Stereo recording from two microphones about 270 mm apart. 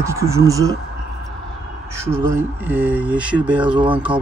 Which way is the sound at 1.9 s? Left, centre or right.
Centre.